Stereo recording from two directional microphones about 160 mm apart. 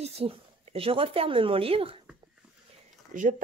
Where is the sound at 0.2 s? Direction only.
40° right (ahead or behind).